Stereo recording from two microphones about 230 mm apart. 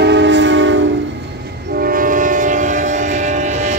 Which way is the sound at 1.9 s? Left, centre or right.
Right.